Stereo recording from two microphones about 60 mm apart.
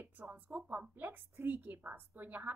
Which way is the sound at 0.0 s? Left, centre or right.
Right.